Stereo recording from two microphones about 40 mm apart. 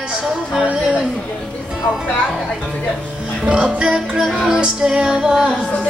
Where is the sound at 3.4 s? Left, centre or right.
Right.